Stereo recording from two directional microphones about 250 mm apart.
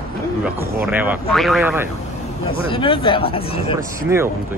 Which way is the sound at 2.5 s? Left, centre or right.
Left.